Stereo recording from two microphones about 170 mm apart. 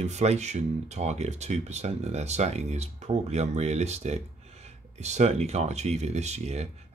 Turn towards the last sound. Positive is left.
turn(degrees=-40)  # may be behind; listen again after turning